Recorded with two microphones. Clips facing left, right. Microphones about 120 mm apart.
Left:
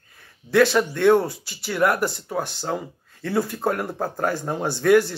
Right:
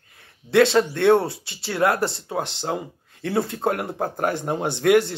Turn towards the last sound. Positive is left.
turn(degrees=-20)  # may be behind; listen again after turning